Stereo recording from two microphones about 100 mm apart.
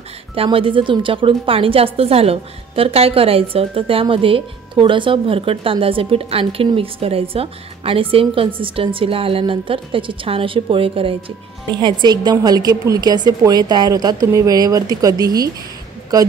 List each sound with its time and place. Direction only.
0.3 s a woman's voice: 65° right (ahead or behind)
11.7 s a woman's voice: 45° right (ahead or behind)